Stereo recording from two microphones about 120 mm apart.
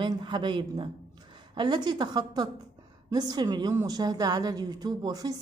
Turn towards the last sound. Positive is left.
turn(degrees=-30)  # may be behind; listen again after turning